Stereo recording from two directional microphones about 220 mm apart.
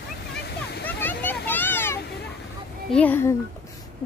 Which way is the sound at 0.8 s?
10° left (ahead or behind).